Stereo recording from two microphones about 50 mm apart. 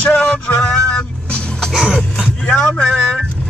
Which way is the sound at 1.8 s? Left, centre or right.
Centre.